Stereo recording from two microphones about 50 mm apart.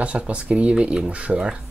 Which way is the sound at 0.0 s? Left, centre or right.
Right.